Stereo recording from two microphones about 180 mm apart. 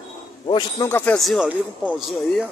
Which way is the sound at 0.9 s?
5° left (ahead or behind).